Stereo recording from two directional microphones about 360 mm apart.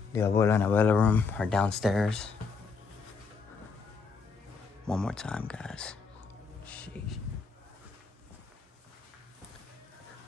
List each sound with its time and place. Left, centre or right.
0.3 s speech: centre
4.8 s speech: centre
6.6 s a sound: centre